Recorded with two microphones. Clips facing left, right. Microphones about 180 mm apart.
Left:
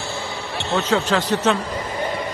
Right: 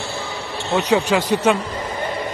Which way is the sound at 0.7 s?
15° right (ahead or behind).